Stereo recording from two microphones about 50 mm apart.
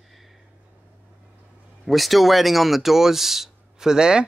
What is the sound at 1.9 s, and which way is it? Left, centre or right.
Speech, centre.